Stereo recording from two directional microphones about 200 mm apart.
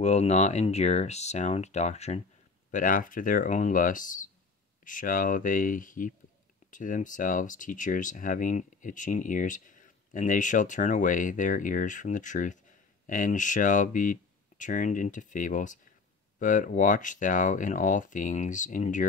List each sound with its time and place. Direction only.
0.0 s speech: 35° left (ahead or behind)